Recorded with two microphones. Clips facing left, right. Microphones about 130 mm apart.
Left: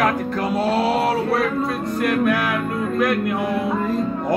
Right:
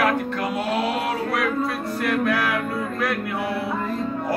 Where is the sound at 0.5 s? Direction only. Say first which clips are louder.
Left 6 dB; 35° left (ahead or behind).